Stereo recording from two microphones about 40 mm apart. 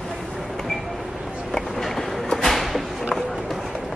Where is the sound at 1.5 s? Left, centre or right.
Centre.